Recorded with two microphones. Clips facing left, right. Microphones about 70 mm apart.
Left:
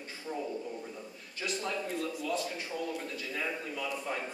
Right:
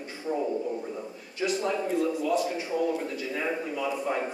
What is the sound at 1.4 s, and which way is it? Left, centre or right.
Speech, centre.